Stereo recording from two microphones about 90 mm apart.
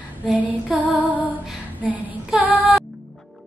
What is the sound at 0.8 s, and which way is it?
Music, 15° left (ahead or behind).